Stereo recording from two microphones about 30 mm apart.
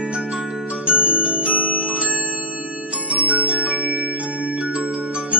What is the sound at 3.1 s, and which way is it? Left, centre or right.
Glockenspiel, right.